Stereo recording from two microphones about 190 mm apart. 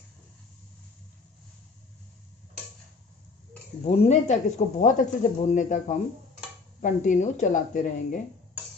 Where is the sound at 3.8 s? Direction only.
35° left (ahead or behind).